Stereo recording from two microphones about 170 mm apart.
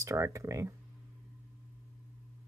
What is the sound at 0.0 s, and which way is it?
Speech, 20° right (ahead or behind).